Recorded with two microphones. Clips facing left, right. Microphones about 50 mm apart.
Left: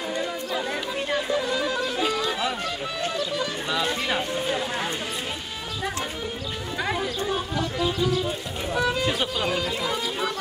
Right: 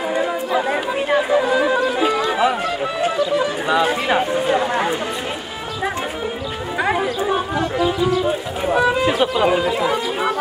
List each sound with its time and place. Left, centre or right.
0.1 s chatter: right
2.0 s music: right
3.0 s speech: centre
6.8 s a sound: right
8.7 s speech: centre